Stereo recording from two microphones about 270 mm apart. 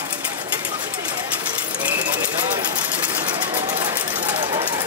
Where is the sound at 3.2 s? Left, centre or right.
Centre.